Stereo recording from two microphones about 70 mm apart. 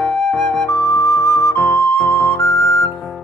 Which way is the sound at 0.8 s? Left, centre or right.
Left.